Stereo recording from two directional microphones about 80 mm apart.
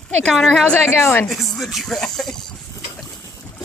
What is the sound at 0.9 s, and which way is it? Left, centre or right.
Speech, left.